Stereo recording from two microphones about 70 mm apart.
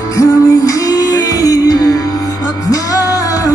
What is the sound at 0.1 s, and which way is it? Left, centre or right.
Music, left.